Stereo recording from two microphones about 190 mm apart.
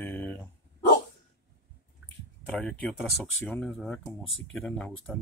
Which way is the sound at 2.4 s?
5° left (ahead or behind).